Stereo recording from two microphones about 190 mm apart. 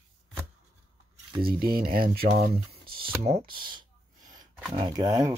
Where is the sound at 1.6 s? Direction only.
50° right (ahead or behind).